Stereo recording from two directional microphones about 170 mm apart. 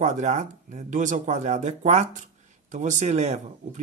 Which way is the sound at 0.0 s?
45° right (ahead or behind).